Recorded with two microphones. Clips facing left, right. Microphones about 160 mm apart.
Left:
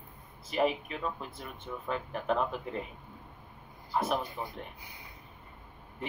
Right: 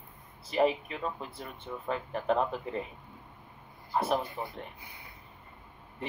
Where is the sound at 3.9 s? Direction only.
25° right (ahead or behind).